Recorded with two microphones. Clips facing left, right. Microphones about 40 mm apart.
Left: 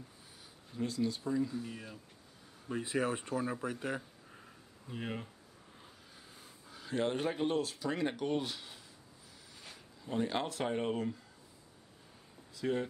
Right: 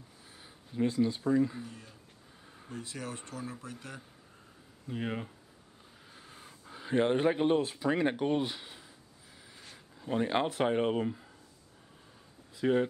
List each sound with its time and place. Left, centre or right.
0.7 s speech: right
1.2 s speech: right
1.7 s speech: left
4.8 s speech: centre
6.1 s speech: right
10.0 s speech: right
12.5 s speech: right